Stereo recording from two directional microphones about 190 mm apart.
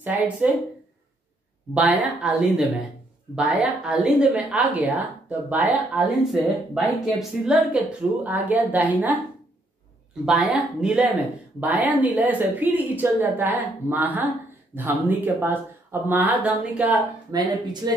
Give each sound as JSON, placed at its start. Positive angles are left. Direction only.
{"t": 0.0, "sound": "speech", "side_deg": -10}
{"t": 1.7, "sound": "a woman's voice", "side_deg": -5}
{"t": 10.2, "sound": "a woman's voice", "side_deg": -5}
{"t": 17.3, "sound": "speech", "side_deg": -20}